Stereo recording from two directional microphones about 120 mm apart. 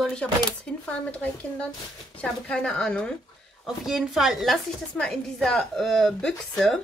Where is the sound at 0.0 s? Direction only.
10° left (ahead or behind).